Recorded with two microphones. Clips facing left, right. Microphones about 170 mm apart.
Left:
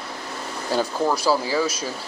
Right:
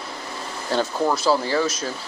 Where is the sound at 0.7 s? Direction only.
5° left (ahead or behind).